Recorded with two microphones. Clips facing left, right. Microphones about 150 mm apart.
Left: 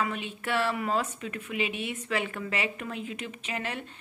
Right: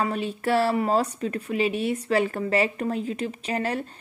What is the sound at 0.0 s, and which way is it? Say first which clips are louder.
A woman's voice: right 6 dB; 35° right (ahead or behind).